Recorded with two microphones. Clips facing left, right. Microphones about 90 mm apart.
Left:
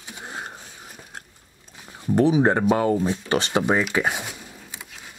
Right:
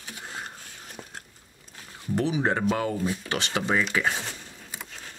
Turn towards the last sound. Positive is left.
turn(degrees=15)  # may be behind; listen again after turning